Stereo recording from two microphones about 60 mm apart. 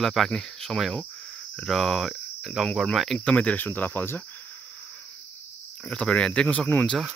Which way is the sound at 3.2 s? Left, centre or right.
Centre.